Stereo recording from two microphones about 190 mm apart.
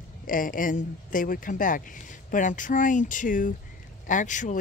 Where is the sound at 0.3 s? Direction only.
45° left (ahead or behind).